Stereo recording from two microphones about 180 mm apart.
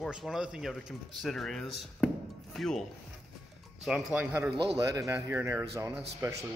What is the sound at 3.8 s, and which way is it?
Speech, 5° right (ahead or behind).